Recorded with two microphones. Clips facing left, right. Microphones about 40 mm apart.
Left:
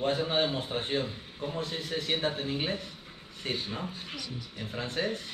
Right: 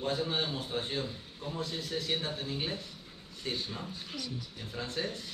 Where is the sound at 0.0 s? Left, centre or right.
Left.